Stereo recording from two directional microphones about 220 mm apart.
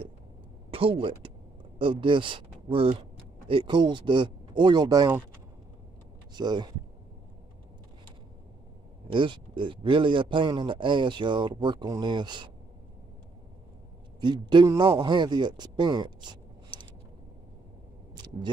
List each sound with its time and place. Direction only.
0.7 s speech: 25° right (ahead or behind)
6.3 s speech: 20° right (ahead or behind)
9.0 s speech: 20° right (ahead or behind)
14.2 s speech: 20° right (ahead or behind)
18.1 s a sound: 20° right (ahead or behind)